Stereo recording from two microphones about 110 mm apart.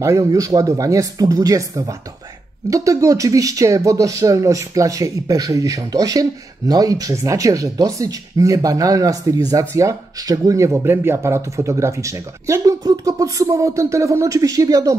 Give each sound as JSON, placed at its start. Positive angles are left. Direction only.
{"t": 0.0, "sound": "speech", "side_deg": -30}